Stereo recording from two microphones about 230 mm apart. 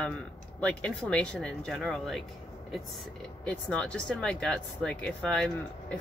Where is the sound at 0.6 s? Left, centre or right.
Centre.